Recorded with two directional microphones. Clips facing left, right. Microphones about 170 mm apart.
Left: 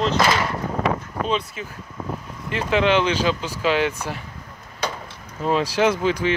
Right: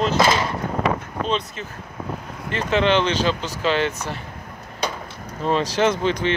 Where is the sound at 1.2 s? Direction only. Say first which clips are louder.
Even; 5° left (ahead or behind).